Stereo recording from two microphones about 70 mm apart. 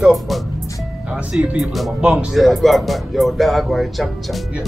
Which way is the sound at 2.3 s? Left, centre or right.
Centre.